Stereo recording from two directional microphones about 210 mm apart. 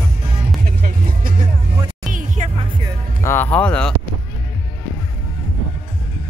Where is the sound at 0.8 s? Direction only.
40° right (ahead or behind).